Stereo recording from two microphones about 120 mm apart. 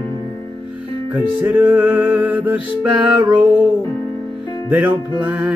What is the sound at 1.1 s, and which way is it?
Music, 15° right (ahead or behind).